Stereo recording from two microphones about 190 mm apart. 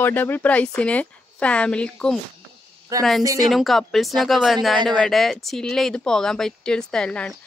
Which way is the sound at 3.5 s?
Centre (ahead or behind).